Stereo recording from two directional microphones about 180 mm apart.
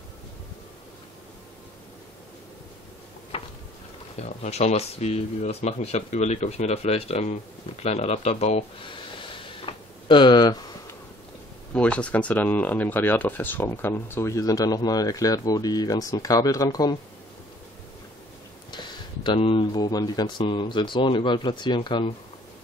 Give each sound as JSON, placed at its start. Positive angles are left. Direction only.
{"t": 3.3, "sound": "a sound", "side_deg": 35}
{"t": 4.2, "sound": "speech", "side_deg": 35}
{"t": 11.7, "sound": "speech", "side_deg": 5}
{"t": 18.7, "sound": "speech", "side_deg": 25}